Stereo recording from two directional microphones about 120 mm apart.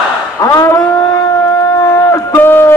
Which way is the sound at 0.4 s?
25° left (ahead or behind).